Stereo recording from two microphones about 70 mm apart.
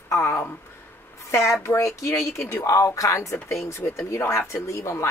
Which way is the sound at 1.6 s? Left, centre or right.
Left.